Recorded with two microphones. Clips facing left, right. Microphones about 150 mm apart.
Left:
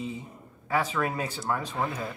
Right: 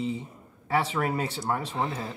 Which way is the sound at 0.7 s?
30° right (ahead or behind).